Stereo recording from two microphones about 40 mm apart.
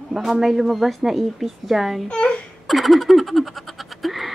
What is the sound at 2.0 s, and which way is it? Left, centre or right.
Speech, left.